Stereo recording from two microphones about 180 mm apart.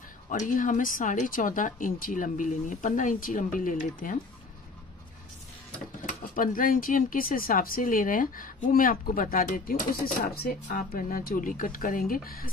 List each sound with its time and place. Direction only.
0.3 s speech: 45° left (ahead or behind)
6.0 s speech: 50° left (ahead or behind)